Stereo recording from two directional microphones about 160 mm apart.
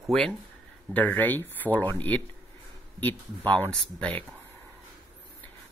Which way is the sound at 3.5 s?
5° left (ahead or behind).